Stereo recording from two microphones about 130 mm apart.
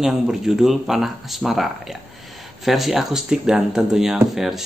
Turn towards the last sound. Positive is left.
turn(degrees=0)  # may be behind; listen again after turning